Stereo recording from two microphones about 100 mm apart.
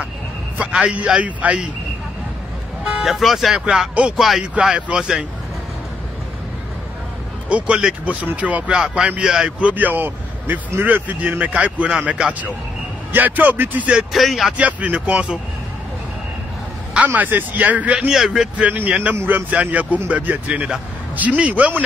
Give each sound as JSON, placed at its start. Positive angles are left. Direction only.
{"t": 0.6, "sound": "speech", "side_deg": -10}
{"t": 2.8, "sound": "speech", "side_deg": -5}
{"t": 7.4, "sound": "speech", "side_deg": -10}
{"t": 14.1, "sound": "speech", "side_deg": 0}
{"t": 14.6, "sound": "speech", "side_deg": -15}
{"t": 16.9, "sound": "speech", "side_deg": -15}